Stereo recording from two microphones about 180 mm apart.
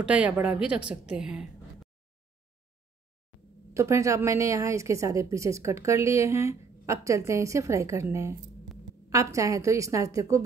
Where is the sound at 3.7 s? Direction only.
15° right (ahead or behind).